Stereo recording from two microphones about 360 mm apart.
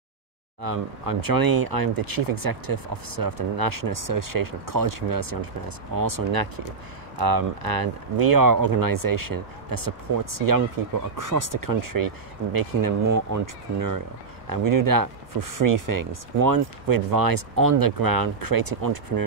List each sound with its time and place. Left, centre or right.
0.6 s speech: right